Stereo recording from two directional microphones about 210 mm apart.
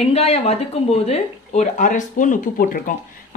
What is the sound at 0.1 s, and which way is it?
Speech, 30° left (ahead or behind).